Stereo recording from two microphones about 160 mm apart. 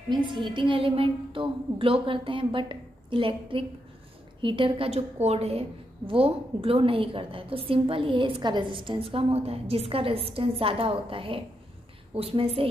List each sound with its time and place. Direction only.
0.1 s a woman's voice: 30° right (ahead or behind)